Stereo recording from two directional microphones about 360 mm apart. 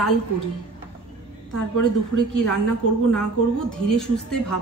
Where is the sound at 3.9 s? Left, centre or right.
Centre.